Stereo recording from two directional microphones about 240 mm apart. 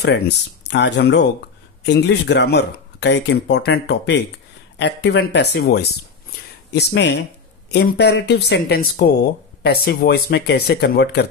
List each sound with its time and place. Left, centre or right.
0.7 s speech: left